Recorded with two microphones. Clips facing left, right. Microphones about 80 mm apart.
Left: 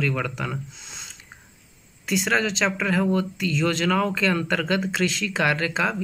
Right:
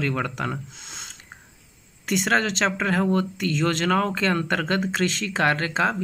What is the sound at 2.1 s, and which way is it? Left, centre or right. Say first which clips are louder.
Speech: right 1 dB; right.